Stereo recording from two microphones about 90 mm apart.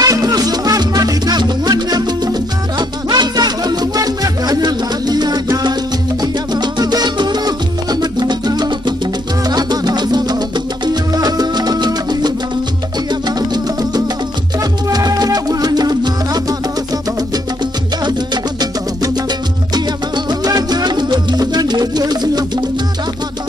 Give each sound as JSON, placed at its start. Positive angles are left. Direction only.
{"t": 0.0, "sound": "music", "side_deg": -45}
{"t": 18.0, "sound": "music", "side_deg": -50}
{"t": 20.2, "sound": "music", "side_deg": -50}